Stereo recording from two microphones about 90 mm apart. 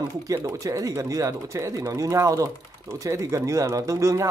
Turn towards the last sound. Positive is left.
turn(degrees=-35)  # may be behind; listen again after turning